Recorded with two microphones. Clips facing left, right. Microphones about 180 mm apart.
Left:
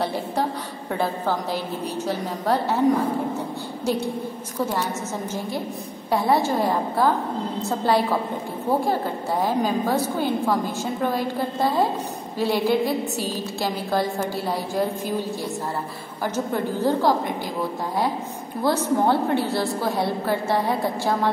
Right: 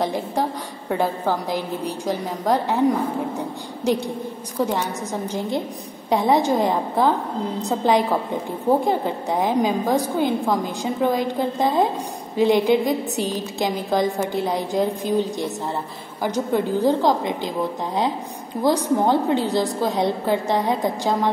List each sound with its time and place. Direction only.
0.0 s a woman's voice: 10° right (ahead or behind)
6.0 s a woman's voice: 20° right (ahead or behind)
18.6 s a woman's voice: 15° right (ahead or behind)